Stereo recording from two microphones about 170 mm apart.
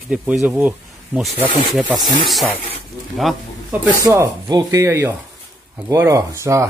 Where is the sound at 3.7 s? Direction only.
15° right (ahead or behind).